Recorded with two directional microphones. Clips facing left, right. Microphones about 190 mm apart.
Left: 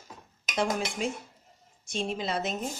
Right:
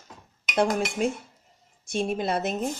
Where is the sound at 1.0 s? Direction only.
55° right (ahead or behind).